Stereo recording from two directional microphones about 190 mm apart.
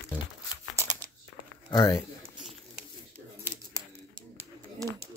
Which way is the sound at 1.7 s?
20° left (ahead or behind).